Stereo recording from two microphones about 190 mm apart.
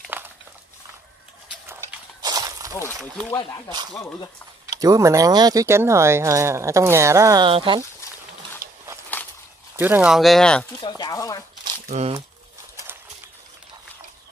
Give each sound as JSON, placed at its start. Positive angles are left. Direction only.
{"t": 0.1, "sound": "dog", "side_deg": -10}
{"t": 1.5, "sound": "horse", "side_deg": -10}
{"t": 3.3, "sound": "speech", "side_deg": 15}
{"t": 4.7, "sound": "speech", "side_deg": -20}
{"t": 8.6, "sound": "a sound", "side_deg": -50}
{"t": 9.8, "sound": "speech", "side_deg": -10}
{"t": 10.8, "sound": "speech", "side_deg": 20}
{"t": 11.9, "sound": "speech", "side_deg": -35}